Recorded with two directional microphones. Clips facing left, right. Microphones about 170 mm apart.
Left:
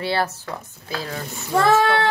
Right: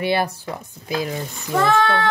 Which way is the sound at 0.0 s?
15° right (ahead or behind).